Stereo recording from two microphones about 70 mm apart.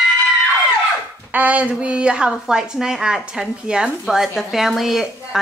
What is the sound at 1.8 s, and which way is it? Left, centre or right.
A woman's voice, centre.